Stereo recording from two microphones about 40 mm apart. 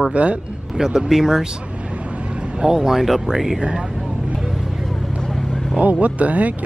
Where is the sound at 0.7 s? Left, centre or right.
Centre.